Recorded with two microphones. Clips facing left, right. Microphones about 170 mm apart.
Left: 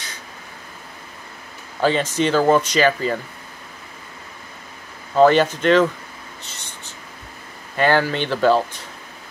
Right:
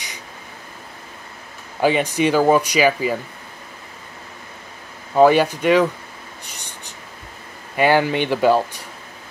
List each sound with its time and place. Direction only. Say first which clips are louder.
1.8 s speech: right 1 dB; 15° right (ahead or behind)
5.1 s speech: even; 10° right (ahead or behind)
6.4 s a sound: right 1 dB; 15° right (ahead or behind)
7.7 s speech: right 2 dB; 10° right (ahead or behind)